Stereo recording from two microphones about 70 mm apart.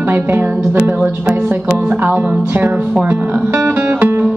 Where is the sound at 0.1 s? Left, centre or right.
Right.